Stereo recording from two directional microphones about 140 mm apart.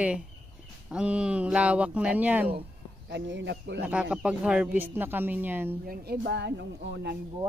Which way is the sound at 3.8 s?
10° right (ahead or behind).